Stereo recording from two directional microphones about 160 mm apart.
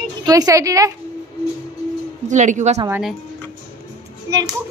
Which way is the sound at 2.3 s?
50° right (ahead or behind).